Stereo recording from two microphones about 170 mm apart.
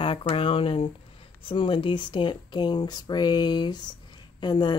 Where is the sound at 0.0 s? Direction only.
30° left (ahead or behind).